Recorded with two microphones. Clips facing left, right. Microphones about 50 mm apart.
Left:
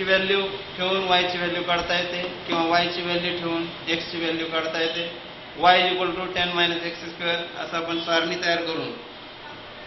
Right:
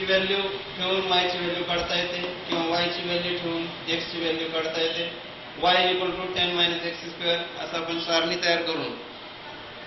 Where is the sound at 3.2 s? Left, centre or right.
Left.